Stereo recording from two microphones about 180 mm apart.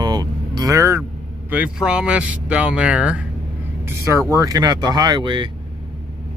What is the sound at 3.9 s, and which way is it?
Speech, 15° right (ahead or behind).